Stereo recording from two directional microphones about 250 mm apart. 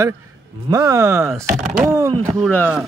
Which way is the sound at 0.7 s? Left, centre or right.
Centre.